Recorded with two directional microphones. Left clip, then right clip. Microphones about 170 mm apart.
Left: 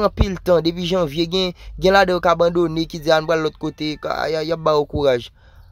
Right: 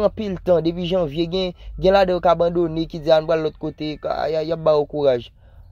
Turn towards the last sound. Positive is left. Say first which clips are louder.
# left 1 dB
turn(degrees=15)  # may be behind; listen again after turning